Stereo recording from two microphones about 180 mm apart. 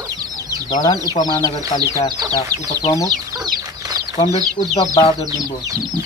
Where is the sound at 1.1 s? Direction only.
20° left (ahead or behind).